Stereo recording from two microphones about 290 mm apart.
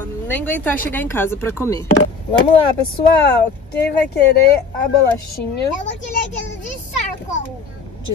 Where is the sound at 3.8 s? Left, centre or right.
Left.